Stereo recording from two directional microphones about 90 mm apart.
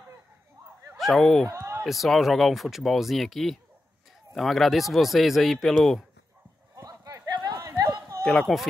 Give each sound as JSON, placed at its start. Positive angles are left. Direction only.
{"t": 0.9, "sound": "speech", "side_deg": 0}
{"t": 1.5, "sound": "a sound", "side_deg": -35}
{"t": 1.8, "sound": "speech", "side_deg": 0}
{"t": 6.7, "sound": "clip-clop", "side_deg": -40}
{"t": 7.6, "sound": "chatter", "side_deg": -45}
{"t": 8.2, "sound": "speech", "side_deg": 0}